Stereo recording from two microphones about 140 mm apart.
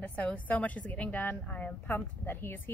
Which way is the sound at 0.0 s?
10° left (ahead or behind).